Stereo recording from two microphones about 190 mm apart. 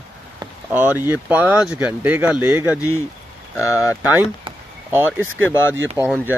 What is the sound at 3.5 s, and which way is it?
Speech, 15° left (ahead or behind).